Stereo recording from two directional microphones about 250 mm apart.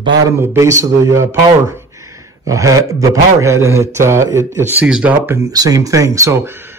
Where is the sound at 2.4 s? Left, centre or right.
Centre.